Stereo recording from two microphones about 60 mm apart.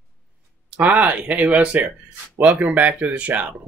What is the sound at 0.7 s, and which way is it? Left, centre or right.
Speech, right.